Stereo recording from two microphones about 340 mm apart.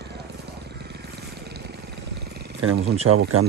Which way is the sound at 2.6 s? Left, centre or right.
Right.